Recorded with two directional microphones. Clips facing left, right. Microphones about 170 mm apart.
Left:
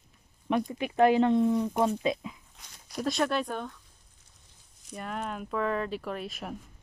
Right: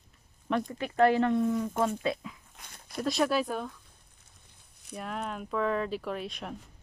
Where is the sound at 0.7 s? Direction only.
15° left (ahead or behind).